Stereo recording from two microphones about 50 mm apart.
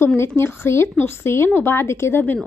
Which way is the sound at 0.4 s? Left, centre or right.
Left.